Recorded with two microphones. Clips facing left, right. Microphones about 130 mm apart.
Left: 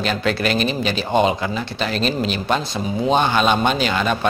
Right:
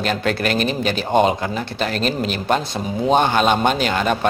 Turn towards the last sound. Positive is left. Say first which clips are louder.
# right 1 dB
turn(degrees=-45)  # may be behind; listen again after turning